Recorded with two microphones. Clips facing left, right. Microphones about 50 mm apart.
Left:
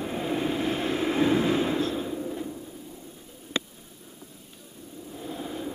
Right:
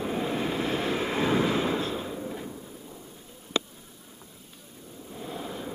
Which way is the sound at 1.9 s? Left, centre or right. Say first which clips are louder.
Left 3 dB; centre.